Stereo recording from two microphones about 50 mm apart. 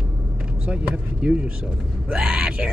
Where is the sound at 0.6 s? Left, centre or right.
Right.